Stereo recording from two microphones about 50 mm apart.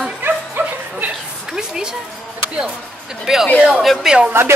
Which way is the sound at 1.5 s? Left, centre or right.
Centre.